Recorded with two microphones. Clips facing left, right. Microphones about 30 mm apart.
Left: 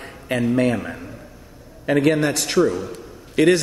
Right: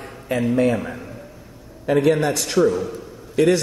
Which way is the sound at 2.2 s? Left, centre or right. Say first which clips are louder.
Even; left.